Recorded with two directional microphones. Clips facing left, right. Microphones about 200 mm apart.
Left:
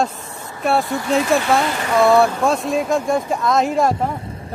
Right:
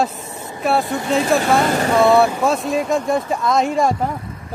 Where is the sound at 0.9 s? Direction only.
20° right (ahead or behind).